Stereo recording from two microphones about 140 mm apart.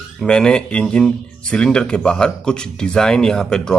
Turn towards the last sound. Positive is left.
turn(degrees=5)  # may be behind; listen again after turning